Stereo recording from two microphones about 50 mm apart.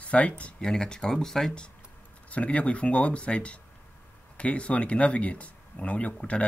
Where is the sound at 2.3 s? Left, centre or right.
Left.